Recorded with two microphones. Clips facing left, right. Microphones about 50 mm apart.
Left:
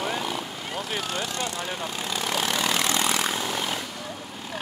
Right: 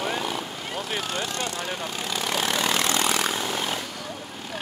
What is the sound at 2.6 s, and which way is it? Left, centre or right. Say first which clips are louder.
Vehicle: right 1 dB; right.